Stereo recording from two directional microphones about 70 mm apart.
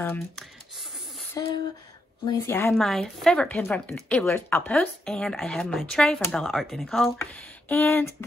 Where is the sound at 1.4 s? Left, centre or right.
Left.